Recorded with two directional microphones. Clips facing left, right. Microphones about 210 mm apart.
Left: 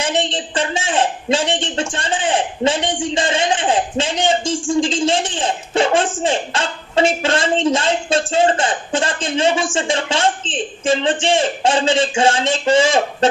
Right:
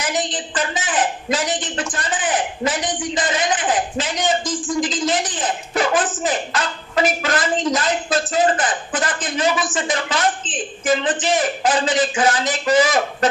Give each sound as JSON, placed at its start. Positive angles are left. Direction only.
{"t": 0.0, "sound": "a woman's voice", "side_deg": 30}